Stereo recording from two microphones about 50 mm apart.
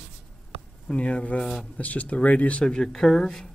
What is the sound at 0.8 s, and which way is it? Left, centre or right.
Speech, left.